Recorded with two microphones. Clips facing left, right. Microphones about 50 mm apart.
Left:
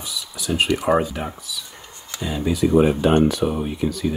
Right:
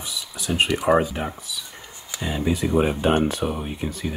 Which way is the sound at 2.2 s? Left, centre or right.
Right.